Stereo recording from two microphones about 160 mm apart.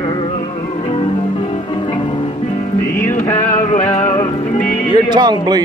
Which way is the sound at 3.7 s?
50° left (ahead or behind).